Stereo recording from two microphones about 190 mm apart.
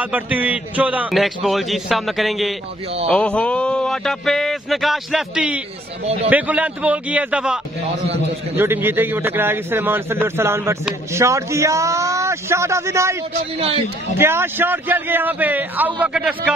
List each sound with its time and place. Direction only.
0.0 s a man's voice: 5° right (ahead or behind)
14.2 s a man's voice: 10° right (ahead or behind)